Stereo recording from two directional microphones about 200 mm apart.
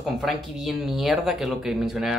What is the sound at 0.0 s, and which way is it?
Speech, centre (ahead or behind).